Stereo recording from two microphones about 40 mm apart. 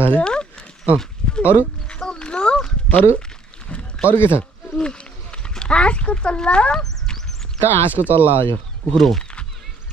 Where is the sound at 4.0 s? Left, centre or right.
Left.